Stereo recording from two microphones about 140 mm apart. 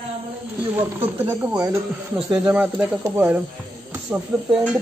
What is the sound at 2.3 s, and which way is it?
Speech, 10° right (ahead or behind).